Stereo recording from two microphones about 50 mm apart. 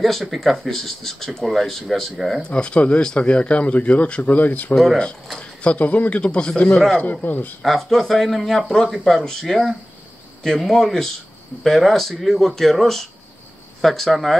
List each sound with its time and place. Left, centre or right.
0.0 s speech: centre
2.5 s speech: centre
7.0 s speech: left
7.6 s speech: centre